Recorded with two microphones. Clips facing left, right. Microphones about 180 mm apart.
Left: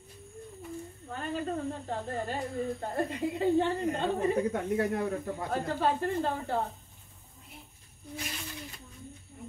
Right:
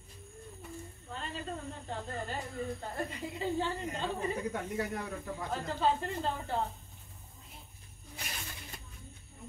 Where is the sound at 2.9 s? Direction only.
55° left (ahead or behind).